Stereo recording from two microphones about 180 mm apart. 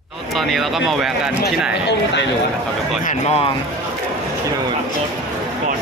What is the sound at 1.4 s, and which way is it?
Speech, 70° left (ahead or behind).